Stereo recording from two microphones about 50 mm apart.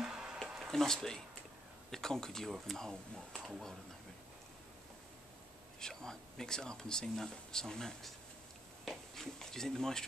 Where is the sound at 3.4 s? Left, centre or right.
Centre.